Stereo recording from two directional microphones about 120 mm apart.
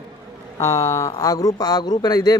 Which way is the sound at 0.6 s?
20° left (ahead or behind).